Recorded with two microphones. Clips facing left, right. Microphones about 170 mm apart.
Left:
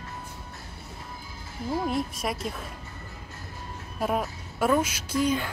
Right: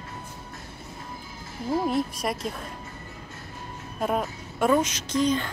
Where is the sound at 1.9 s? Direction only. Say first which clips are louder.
Right 2 dB; centre (ahead or behind).